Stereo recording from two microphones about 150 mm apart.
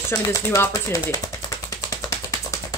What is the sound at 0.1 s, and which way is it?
Speech, 20° left (ahead or behind).